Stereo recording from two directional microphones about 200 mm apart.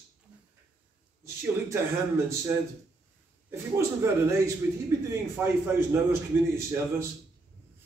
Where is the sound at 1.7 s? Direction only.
15° right (ahead or behind).